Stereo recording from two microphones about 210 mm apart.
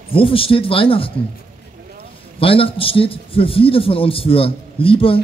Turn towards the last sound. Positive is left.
turn(degrees=25)  # may be behind; listen again after turning